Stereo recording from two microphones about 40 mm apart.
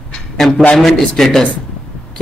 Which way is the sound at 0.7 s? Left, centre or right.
Centre.